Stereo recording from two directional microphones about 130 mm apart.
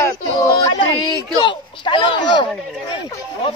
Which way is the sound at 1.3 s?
35° left (ahead or behind).